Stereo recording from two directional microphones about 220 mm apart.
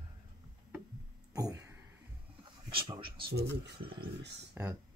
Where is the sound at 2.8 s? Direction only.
20° right (ahead or behind).